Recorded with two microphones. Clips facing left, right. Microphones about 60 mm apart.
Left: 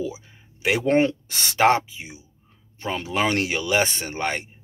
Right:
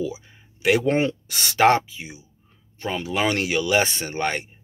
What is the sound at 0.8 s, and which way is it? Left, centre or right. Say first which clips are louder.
Speech: left 2 dB; left.